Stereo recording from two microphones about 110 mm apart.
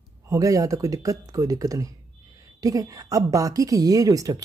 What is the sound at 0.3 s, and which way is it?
Speech, 30° right (ahead or behind).